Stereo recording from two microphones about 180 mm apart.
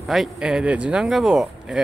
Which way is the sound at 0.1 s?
5° right (ahead or behind).